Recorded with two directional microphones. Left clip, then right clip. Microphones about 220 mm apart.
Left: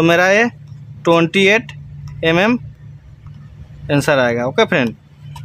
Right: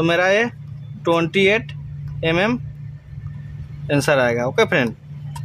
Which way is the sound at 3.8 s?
10° left (ahead or behind).